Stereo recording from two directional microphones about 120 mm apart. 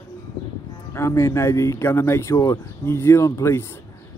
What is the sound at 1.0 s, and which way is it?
Speech, 20° left (ahead or behind).